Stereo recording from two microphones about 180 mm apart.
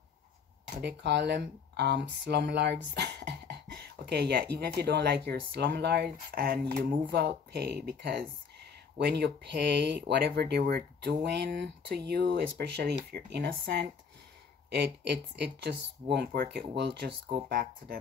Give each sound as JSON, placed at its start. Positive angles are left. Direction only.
{"t": 0.7, "sound": "speech", "side_deg": -70}